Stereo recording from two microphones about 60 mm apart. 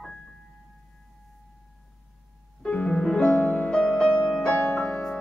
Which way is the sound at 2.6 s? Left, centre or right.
Centre.